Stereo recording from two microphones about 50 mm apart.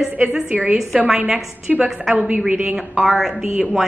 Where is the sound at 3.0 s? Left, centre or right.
Centre.